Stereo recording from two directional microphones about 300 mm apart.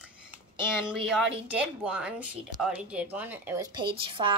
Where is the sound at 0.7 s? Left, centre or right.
Centre.